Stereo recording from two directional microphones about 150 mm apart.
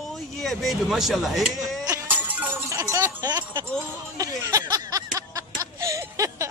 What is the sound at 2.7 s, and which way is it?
Speech, 20° right (ahead or behind).